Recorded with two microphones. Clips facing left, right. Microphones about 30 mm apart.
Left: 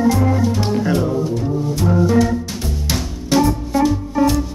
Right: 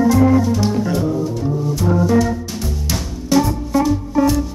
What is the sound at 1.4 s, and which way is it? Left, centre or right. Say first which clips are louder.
Music: even; centre.